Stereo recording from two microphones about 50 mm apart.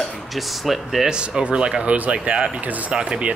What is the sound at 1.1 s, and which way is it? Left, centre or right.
Speech, centre.